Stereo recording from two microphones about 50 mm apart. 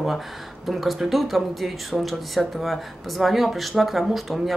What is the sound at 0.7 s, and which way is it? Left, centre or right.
Speech, centre.